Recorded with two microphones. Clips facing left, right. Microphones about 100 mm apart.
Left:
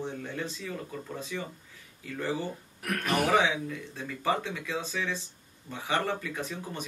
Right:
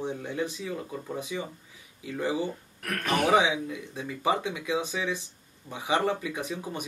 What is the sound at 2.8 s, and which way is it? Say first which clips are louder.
Speech: right 1 dB; 5° left (ahead or behind).